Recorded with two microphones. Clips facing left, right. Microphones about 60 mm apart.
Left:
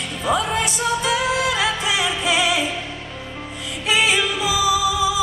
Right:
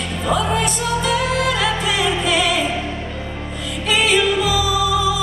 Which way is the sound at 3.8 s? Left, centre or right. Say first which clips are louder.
Right 2 dB; centre.